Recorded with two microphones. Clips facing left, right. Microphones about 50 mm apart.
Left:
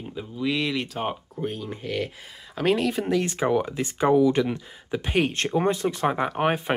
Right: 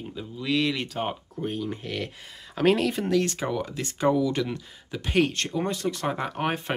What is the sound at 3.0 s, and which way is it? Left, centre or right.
Speech, centre.